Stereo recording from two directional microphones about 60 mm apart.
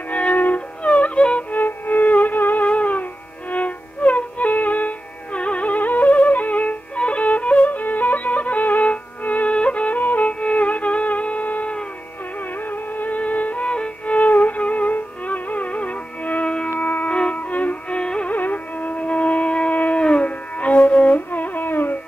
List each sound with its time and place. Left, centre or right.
0.1 s music: left
1.6 s music: left
18.3 s music: left